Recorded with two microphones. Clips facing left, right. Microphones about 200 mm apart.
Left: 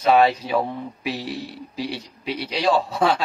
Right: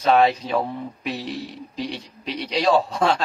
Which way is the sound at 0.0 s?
10° left (ahead or behind).